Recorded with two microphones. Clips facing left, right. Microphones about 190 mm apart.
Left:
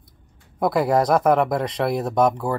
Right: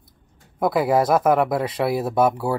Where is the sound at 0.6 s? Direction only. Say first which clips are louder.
Even; centre (ahead or behind).